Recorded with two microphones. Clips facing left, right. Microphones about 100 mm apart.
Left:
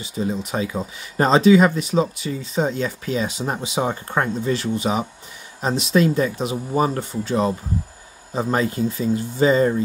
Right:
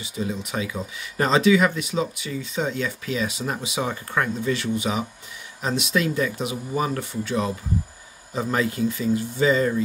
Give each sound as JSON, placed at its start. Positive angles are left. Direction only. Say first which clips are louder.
{"t": 0.0, "sound": "speech", "louder": "left 4 dB", "side_deg": 35}